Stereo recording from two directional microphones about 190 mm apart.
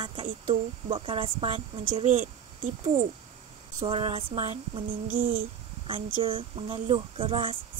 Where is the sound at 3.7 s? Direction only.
30° right (ahead or behind).